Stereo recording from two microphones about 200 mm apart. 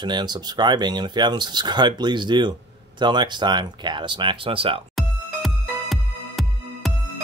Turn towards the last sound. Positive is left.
turn(degrees=0)  # may be behind; listen again after turning